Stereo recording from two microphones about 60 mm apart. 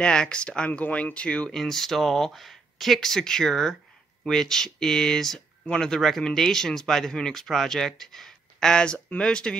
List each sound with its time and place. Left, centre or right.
0.0 s speech: centre
1.5 s speech: centre